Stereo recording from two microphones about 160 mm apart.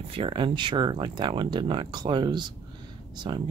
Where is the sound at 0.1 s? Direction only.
35° right (ahead or behind).